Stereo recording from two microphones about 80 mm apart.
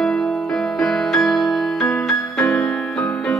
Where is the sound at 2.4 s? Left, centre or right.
Centre.